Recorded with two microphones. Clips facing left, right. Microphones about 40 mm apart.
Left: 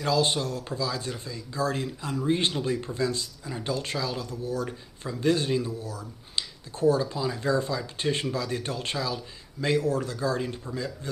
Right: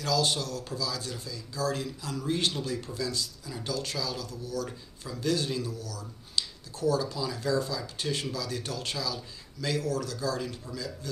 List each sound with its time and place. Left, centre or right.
0.0 s speech: left